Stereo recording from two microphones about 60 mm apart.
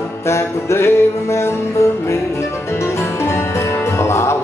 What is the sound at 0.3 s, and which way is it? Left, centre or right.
Music, left.